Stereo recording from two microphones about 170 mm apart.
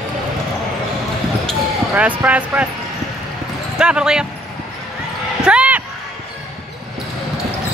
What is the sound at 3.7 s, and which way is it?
Speech, 5° right (ahead or behind).